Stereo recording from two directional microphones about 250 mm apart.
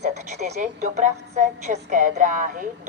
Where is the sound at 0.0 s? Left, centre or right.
Right.